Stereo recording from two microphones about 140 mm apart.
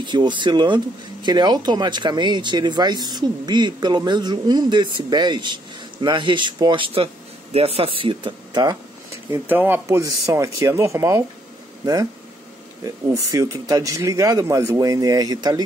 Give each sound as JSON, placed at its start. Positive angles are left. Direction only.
{"t": 0.0, "sound": "speech", "side_deg": -35}
{"t": 9.1, "sound": "speech", "side_deg": -15}